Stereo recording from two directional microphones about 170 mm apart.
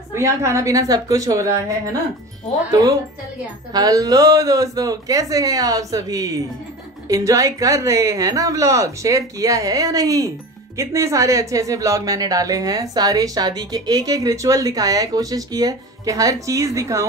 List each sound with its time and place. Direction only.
0.1 s speech: 15° right (ahead or behind)